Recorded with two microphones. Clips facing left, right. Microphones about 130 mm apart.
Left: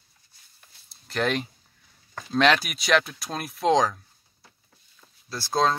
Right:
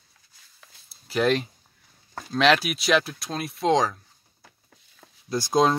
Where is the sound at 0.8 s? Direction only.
5° right (ahead or behind).